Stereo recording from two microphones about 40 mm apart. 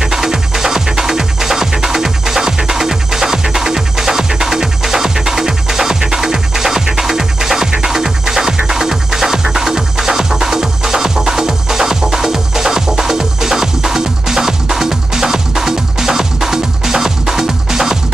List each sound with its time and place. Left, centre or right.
0.0 s music: centre